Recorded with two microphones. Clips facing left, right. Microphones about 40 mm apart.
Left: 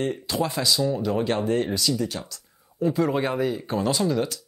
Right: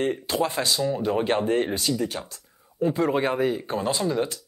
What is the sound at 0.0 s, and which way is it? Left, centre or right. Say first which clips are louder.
Speech: right 1 dB; right.